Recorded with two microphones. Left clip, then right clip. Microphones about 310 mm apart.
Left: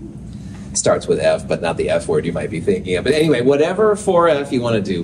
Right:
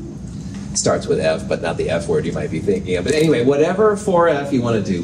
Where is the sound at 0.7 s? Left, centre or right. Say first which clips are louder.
Left 2 dB; left.